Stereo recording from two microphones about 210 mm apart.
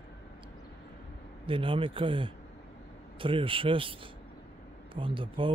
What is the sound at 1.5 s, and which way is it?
Speech, 25° right (ahead or behind).